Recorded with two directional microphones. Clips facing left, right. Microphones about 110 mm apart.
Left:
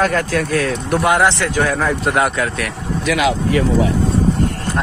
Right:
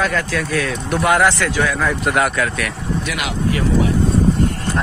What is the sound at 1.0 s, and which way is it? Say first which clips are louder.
Speech: even; 25° left (ahead or behind).